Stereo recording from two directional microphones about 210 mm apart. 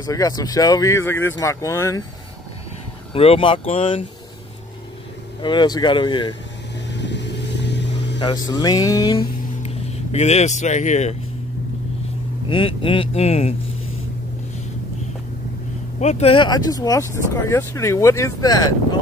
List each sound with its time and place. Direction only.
0.0 s speech: 15° left (ahead or behind)
3.1 s speech: 25° left (ahead or behind)
5.4 s speech: 20° left (ahead or behind)
6.9 s vehicle: 55° left (ahead or behind)
8.2 s speech: 20° left (ahead or behind)
10.1 s speech: 30° left (ahead or behind)
12.4 s speech: 25° left (ahead or behind)
16.0 s speech: 30° left (ahead or behind)